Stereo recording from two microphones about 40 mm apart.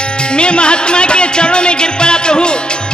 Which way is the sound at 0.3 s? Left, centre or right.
Left.